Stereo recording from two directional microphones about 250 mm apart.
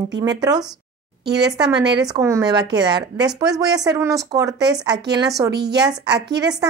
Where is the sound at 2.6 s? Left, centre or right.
Right.